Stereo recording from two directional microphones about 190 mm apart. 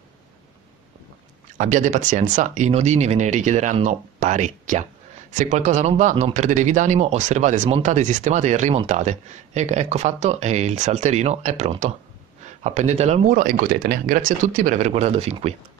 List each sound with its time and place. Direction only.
1.6 s speech: 40° right (ahead or behind)